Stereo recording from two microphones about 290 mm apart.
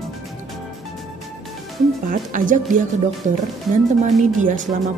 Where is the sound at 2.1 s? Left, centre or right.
Right.